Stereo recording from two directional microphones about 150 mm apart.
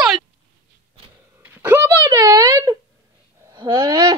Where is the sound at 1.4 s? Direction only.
15° right (ahead or behind).